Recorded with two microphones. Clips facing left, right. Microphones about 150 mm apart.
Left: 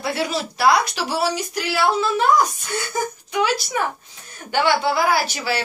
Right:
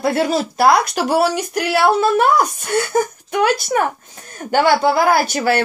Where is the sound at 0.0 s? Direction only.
45° right (ahead or behind).